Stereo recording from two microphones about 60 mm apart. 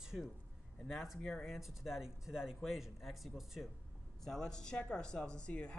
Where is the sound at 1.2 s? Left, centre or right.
Centre.